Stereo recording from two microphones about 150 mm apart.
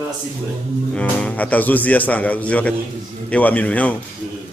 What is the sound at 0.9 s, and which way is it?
A man's voice, 10° left (ahead or behind).